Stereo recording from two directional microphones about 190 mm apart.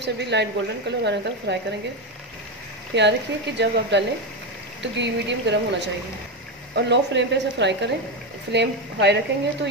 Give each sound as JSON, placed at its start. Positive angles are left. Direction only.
{"t": 0.0, "sound": "speech", "side_deg": -65}
{"t": 2.9, "sound": "speech", "side_deg": -65}